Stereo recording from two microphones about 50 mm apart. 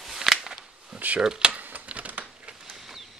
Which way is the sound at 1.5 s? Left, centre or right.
Right.